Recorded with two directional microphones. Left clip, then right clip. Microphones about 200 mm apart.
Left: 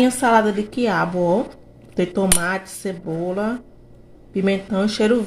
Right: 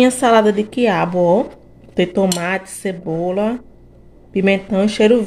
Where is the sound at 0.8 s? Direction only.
35° right (ahead or behind).